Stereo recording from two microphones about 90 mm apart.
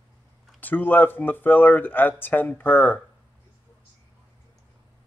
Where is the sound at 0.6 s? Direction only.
20° left (ahead or behind).